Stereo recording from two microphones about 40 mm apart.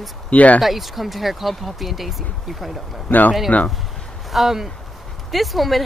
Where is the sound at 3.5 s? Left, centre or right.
Left.